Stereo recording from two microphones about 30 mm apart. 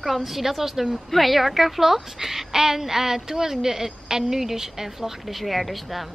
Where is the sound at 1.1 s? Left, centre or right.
Centre.